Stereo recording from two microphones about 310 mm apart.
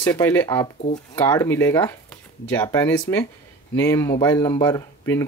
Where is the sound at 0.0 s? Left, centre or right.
Centre.